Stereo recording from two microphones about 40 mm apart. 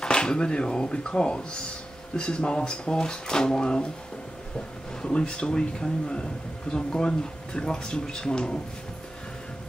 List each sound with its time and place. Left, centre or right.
0.0 s speech: centre